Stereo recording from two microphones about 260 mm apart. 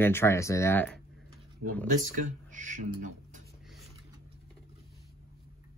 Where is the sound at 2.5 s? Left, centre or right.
Right.